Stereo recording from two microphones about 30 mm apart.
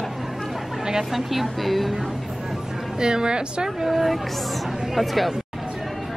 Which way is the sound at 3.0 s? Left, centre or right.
Right.